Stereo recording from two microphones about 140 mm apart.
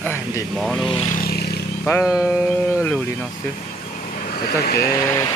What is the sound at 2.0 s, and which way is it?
Speech, 5° right (ahead or behind).